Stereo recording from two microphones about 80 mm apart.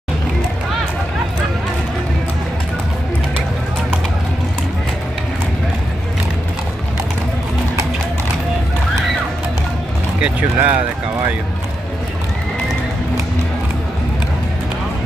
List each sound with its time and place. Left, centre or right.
10.6 s speech: right